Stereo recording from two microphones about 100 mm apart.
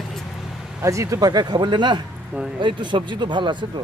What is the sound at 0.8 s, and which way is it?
Speech, 30° right (ahead or behind).